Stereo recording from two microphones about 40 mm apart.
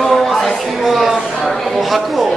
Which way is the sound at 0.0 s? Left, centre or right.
Centre.